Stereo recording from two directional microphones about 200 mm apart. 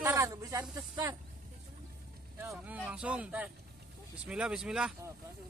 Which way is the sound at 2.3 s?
10° right (ahead or behind).